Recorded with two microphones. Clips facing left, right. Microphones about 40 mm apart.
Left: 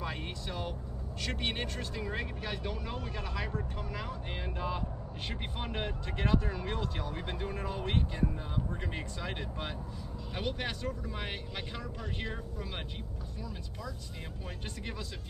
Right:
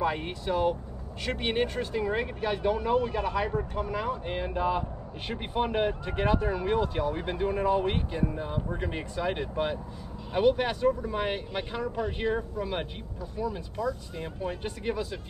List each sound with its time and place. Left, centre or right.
0.0 s speech: centre